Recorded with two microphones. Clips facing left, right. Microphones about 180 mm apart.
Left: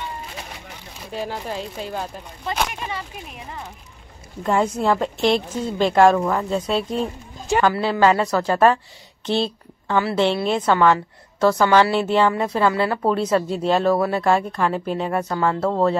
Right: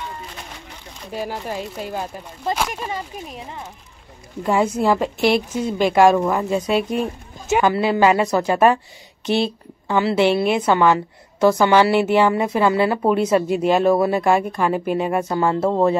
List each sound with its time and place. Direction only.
1.1 s a woman's voice: 10° right (ahead or behind)
2.7 s speech: 40° right (ahead or behind)
4.4 s a woman's voice: 10° right (ahead or behind)
15.2 s a woman's voice: 20° right (ahead or behind)